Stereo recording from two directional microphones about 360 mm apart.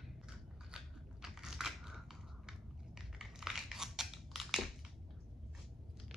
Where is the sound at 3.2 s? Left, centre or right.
Centre.